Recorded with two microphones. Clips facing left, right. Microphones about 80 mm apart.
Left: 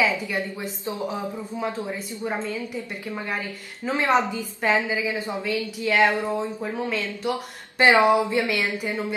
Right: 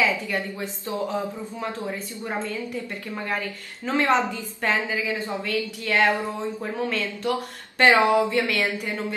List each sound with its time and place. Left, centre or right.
0.3 s a woman's voice: centre
3.8 s a woman's voice: centre
6.6 s speech: centre
7.8 s a woman's voice: centre